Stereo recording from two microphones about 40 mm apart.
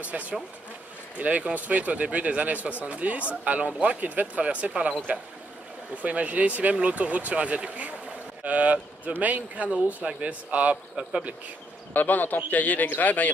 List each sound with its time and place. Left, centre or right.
0.0 s speech: right
4.4 s speech: right
11.0 s speech: centre
11.9 s a man's voice: left